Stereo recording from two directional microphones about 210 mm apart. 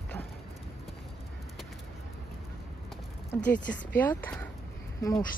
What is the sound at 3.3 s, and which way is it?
Speech, 10° left (ahead or behind).